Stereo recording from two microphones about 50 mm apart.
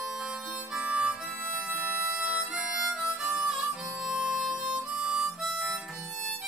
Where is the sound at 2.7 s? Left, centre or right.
Centre.